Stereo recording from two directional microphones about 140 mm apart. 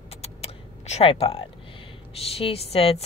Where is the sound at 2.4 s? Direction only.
45° left (ahead or behind).